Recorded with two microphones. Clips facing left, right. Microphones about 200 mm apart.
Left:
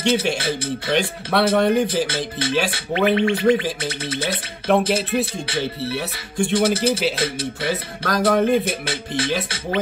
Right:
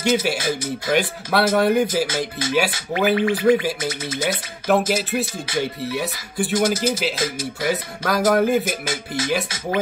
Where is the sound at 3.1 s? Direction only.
25° left (ahead or behind).